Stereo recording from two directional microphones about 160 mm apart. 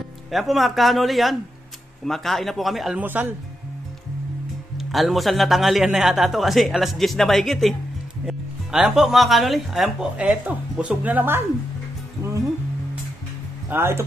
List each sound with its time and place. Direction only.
0.3 s speech: centre (ahead or behind)
4.7 s speech: centre (ahead or behind)
13.7 s speech: 15° right (ahead or behind)